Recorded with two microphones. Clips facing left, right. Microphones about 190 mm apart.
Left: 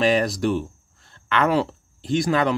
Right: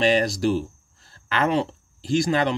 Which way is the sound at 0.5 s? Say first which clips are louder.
Right 1 dB; 30° right (ahead or behind).